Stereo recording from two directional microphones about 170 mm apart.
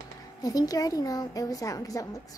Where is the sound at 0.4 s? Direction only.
20° left (ahead or behind).